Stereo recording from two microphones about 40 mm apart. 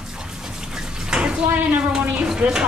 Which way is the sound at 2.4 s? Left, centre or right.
Right.